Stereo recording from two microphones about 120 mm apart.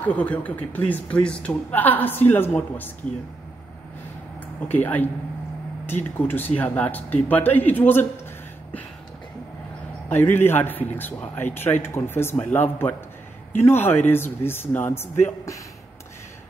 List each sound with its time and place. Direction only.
0.0 s speech: 10° left (ahead or behind)
4.6 s speech: 15° left (ahead or behind)
10.0 s speech: 15° left (ahead or behind)